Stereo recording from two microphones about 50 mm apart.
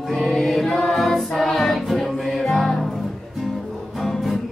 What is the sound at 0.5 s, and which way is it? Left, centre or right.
Choir, centre.